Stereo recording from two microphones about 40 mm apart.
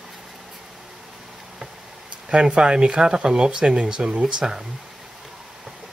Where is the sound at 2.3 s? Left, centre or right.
Right.